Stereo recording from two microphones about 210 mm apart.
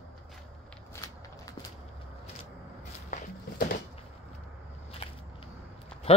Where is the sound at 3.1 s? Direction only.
35° left (ahead or behind).